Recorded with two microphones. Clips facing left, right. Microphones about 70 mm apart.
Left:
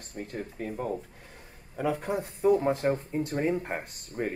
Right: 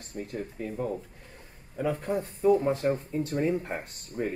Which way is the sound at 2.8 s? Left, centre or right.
Left.